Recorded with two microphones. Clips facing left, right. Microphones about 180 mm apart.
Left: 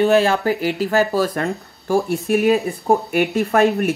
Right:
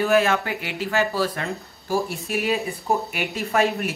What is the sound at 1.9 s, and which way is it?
Speech, 55° left (ahead or behind).